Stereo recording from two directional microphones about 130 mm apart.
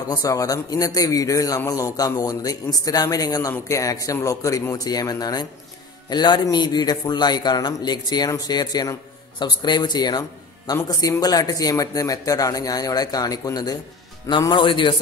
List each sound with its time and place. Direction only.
0.2 s a man's voice: 25° left (ahead or behind)